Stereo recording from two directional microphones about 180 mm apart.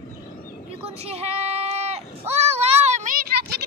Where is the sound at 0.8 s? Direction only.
35° right (ahead or behind); by 3.7 s 60° right (ahead or behind).